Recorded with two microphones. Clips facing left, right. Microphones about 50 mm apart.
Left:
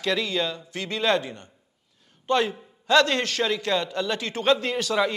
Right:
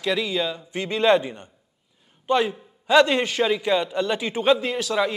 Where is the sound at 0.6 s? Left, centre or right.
Centre.